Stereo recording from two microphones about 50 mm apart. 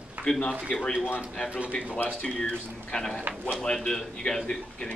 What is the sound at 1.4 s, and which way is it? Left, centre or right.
Speech, right.